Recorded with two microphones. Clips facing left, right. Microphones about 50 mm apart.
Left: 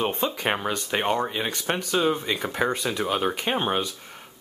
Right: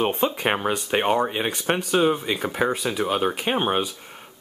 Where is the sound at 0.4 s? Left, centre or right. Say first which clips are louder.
Right 3 dB; centre.